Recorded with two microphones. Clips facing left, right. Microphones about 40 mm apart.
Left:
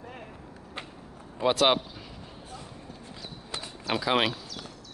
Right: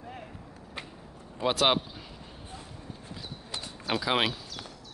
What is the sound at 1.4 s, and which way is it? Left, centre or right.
Speech, centre.